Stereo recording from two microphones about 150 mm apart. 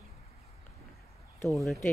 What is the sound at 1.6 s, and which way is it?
Speech, centre (ahead or behind).